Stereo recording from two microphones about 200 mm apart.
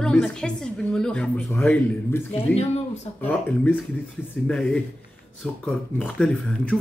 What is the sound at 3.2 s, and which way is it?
Speech, 5° left (ahead or behind).